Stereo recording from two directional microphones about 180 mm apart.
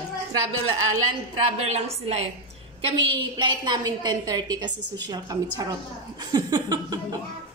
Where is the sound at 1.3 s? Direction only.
35° right (ahead or behind).